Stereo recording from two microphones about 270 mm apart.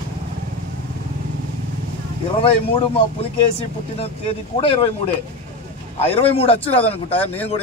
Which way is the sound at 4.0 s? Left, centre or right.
Left.